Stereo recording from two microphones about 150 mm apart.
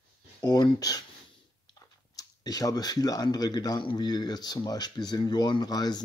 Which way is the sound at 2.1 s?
25° left (ahead or behind).